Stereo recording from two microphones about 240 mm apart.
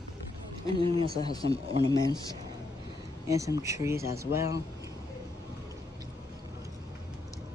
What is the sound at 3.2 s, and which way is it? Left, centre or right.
Speech, centre.